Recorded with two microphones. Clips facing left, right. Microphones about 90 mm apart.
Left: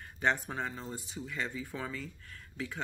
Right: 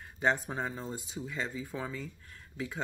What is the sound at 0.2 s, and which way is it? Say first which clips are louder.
Speech: right 1 dB; 10° right (ahead or behind).